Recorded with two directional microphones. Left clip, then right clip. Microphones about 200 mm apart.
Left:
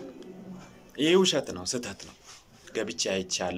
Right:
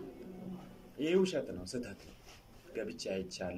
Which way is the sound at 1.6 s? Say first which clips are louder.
Left 9 dB; 45° left (ahead or behind).